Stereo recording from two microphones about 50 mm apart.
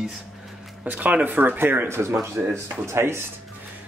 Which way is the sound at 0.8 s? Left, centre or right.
Right.